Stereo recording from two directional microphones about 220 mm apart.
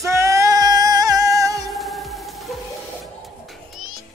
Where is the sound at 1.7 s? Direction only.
Centre (ahead or behind).